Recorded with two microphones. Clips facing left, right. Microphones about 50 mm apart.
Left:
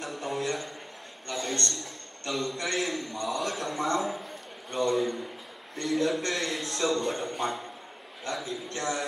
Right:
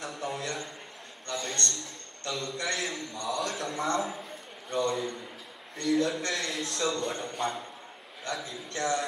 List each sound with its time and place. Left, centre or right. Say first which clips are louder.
0.0 s a man's voice: left 3 dB; centre
1.4 s a man's voice: left 4 dB; left
1.8 s a man's voice: left 2 dB; centre